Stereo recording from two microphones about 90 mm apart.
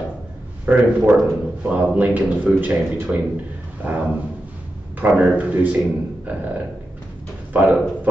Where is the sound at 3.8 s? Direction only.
15° right (ahead or behind).